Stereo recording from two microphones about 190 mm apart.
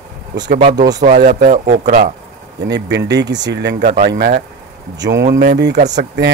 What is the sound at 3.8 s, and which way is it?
Speech, 40° right (ahead or behind).